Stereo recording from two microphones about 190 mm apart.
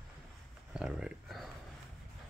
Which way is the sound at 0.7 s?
5° right (ahead or behind).